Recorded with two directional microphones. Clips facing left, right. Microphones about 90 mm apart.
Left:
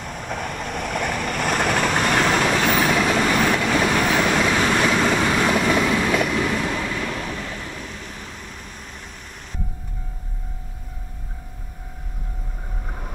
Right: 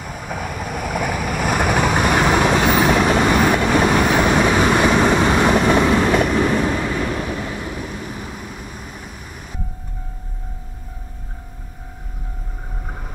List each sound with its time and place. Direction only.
0.0 s boat: 5° right (ahead or behind)
3.2 s vehicle: 20° right (ahead or behind)
5.5 s train: 40° right (ahead or behind)
7.4 s vehicle: 15° right (ahead or behind)